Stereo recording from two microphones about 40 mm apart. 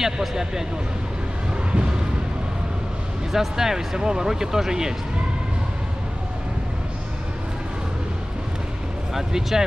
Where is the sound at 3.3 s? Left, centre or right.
Centre.